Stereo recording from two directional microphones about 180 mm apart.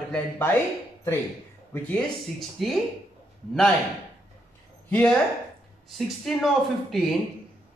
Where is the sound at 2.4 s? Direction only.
Centre (ahead or behind).